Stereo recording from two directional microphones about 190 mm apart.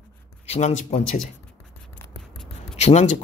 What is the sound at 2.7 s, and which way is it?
Speech, 40° left (ahead or behind).